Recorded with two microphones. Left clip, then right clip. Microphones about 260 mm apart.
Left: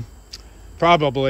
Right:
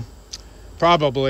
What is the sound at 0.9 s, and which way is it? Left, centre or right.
Speech, centre.